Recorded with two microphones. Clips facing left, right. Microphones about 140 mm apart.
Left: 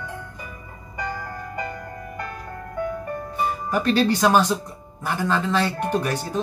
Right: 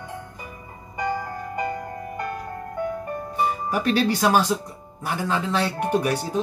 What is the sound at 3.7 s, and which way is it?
Speech, 10° right (ahead or behind).